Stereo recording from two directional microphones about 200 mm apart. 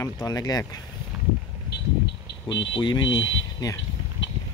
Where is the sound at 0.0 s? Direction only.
15° left (ahead or behind).